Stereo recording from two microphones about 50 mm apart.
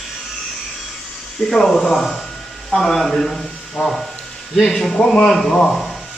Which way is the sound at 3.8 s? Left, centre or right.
Left.